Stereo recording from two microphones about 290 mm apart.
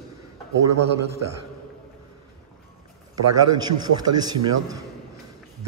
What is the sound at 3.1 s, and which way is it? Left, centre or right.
Speech, right.